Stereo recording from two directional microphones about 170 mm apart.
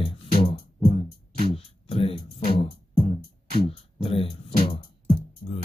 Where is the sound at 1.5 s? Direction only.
35° left (ahead or behind).